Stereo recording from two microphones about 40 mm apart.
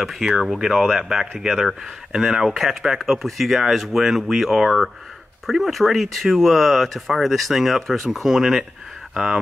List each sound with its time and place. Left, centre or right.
0.2 s speech: right
0.6 s speech: centre